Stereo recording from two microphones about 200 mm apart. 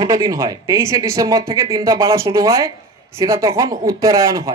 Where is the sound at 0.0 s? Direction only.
15° right (ahead or behind).